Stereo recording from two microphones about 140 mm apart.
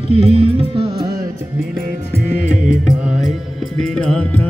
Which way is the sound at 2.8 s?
5° right (ahead or behind).